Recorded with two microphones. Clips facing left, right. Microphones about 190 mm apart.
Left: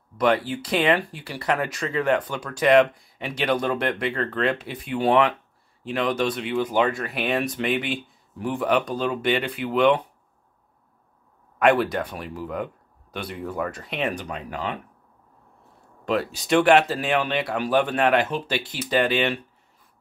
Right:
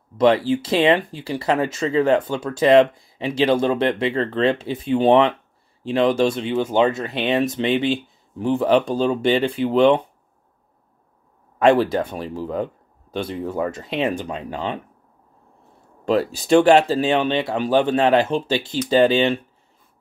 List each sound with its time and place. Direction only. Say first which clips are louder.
0.2 s speech: right 6 dB; 30° right (ahead or behind)
11.5 s speech: right 4 dB; 30° right (ahead or behind)
16.1 s speech: right 6 dB; 35° right (ahead or behind)